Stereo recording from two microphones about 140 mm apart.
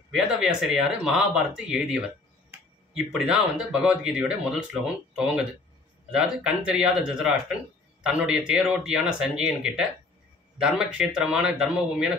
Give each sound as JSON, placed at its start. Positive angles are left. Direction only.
{"t": 0.1, "sound": "speech", "side_deg": -5}